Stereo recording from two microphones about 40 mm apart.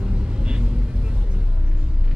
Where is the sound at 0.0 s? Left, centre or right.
Right.